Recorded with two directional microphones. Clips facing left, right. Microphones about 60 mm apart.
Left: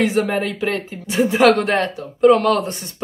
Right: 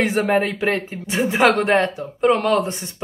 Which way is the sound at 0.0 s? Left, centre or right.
Right.